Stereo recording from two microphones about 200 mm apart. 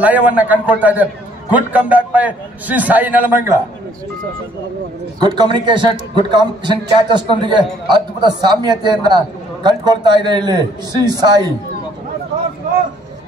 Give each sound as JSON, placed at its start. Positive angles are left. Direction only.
{"t": 0.0, "sound": "a man's voice", "side_deg": -5}
{"t": 5.2, "sound": "a man's voice", "side_deg": -20}